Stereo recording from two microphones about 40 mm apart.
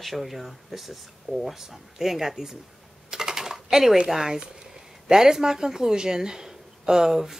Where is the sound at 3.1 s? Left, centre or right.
Centre.